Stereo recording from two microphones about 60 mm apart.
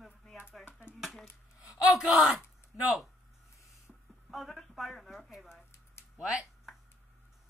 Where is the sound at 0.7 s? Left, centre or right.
Left.